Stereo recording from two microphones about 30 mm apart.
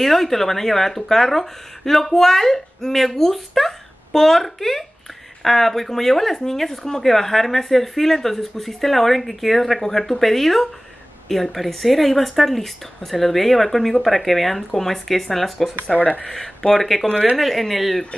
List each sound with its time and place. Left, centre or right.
0.0 s speech: centre
16.3 s speech: centre
16.8 s speech: centre